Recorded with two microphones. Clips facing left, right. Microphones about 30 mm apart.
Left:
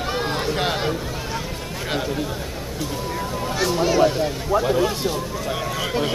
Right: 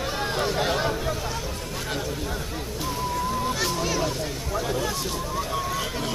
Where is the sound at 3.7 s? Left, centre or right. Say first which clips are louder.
Left 8 dB; left.